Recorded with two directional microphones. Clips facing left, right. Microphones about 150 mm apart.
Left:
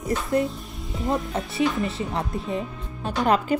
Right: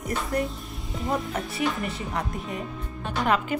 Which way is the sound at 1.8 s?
25° left (ahead or behind).